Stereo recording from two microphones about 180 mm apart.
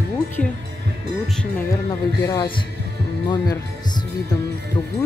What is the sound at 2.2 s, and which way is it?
Speech, 20° left (ahead or behind).